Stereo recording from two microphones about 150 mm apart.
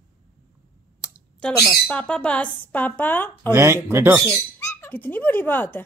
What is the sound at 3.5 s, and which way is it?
Speech, 20° right (ahead or behind).